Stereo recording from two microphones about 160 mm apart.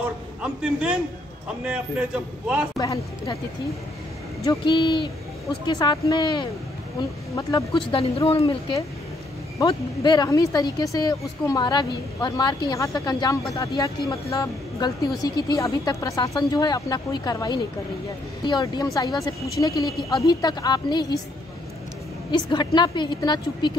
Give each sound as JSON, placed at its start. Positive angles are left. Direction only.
{"t": 0.4, "sound": "a man's voice", "side_deg": -5}
{"t": 2.8, "sound": "speech", "side_deg": 20}
{"t": 4.5, "sound": "speech", "side_deg": 30}
{"t": 22.3, "sound": "speech", "side_deg": 30}